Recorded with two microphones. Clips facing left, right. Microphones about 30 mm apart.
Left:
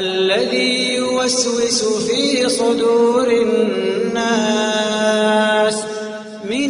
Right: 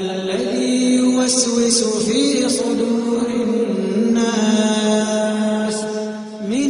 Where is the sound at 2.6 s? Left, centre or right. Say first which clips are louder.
Left 5 dB; left.